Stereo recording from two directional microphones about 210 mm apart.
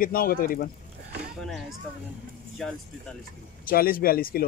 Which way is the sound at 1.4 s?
Centre (ahead or behind).